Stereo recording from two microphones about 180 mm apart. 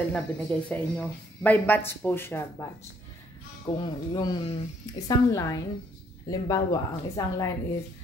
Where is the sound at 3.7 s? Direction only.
20° left (ahead or behind).